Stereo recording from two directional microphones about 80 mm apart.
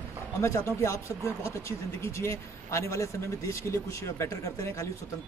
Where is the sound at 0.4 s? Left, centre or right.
Left.